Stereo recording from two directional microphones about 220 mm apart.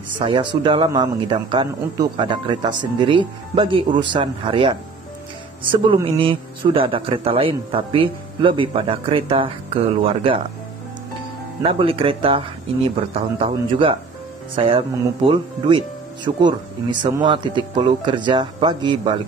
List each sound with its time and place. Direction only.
0.2 s a man's voice: 20° right (ahead or behind)
11.6 s a man's voice: 25° right (ahead or behind)